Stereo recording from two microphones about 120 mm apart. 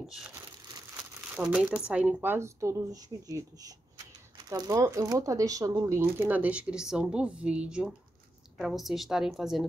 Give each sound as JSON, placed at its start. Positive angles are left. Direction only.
{"t": 1.3, "sound": "a woman's voice", "side_deg": -10}